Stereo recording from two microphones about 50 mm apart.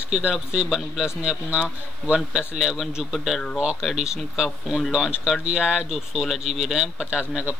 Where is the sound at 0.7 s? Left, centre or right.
Centre.